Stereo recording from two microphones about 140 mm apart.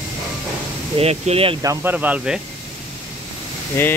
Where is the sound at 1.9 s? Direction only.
10° right (ahead or behind).